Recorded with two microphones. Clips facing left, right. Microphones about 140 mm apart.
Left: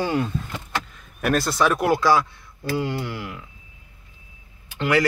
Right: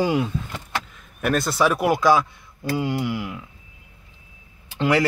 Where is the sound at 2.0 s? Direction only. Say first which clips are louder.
Right 1 dB; 20° right (ahead or behind).